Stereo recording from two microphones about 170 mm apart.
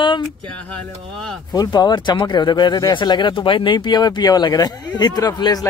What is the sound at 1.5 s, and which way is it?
Speech, 25° left (ahead or behind).